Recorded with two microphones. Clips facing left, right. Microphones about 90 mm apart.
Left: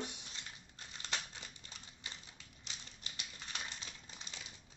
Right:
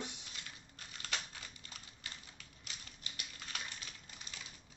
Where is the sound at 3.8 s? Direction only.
25° left (ahead or behind).